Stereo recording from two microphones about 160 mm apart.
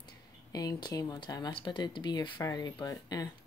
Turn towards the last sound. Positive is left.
turn(degrees=25)  # may be behind; listen again after turning